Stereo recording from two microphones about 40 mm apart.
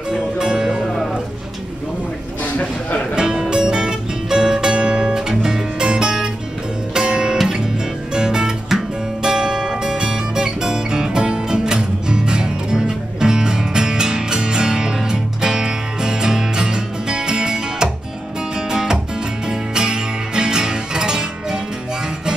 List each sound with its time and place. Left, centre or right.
0.1 s music: centre
0.8 s music: centre
2.6 s a sound: left
3.2 s music: centre